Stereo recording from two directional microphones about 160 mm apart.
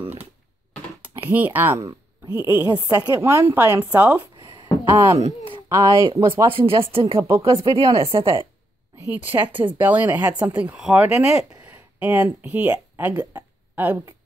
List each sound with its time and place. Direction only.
1.3 s a woman's voice: 10° right (ahead or behind)
4.4 s a sound: 25° right (ahead or behind)
5.0 s speech: 35° right (ahead or behind)
5.7 s a woman's voice: 25° right (ahead or behind)
9.1 s speech: 10° right (ahead or behind)
13.1 s a woman's voice: 25° right (ahead or behind)